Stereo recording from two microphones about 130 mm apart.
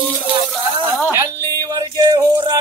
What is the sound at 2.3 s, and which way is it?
Music, 35° right (ahead or behind).